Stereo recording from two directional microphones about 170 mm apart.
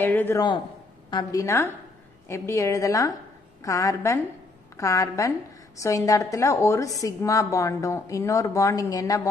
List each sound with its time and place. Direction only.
0.0 s a woman's voice: 10° left (ahead or behind)